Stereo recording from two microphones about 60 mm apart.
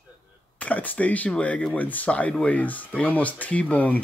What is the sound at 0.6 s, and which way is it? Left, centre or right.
Speech, left.